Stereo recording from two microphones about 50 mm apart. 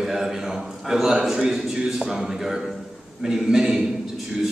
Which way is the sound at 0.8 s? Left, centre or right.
Centre.